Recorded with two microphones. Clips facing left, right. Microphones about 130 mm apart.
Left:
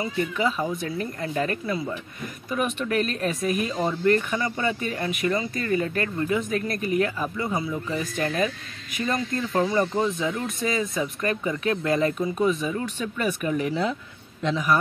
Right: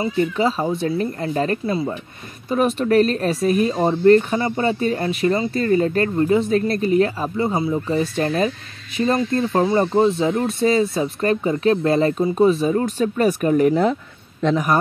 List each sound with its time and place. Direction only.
0.0 s speech: 30° right (ahead or behind); by 14.8 s 50° right (ahead or behind)